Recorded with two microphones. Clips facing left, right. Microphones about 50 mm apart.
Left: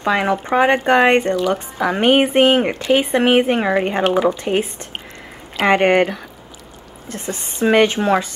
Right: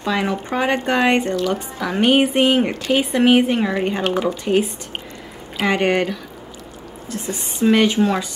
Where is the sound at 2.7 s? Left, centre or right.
Centre.